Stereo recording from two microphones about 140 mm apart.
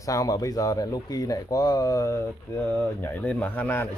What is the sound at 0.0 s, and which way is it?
Speech, 25° left (ahead or behind).